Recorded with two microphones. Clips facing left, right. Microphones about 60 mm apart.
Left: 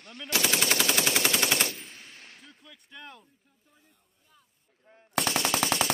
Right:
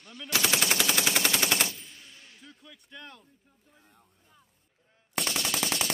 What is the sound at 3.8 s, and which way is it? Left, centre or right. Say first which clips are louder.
Speech: right 5 dB; right.